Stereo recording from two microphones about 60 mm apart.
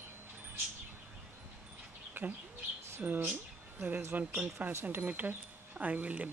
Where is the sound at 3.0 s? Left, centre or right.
Right.